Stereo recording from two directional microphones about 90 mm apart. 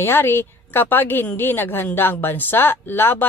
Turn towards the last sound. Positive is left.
turn(degrees=25)  # may be behind; listen again after turning